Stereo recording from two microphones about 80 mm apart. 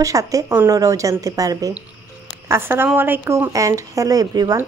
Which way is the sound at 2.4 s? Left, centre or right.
Right.